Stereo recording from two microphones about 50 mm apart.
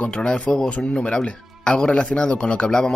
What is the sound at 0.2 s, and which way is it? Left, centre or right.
Speech, centre.